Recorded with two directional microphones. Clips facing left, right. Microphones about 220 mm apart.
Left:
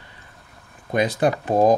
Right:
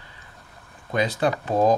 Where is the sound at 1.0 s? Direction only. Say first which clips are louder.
Left 3 dB; 15° left (ahead or behind).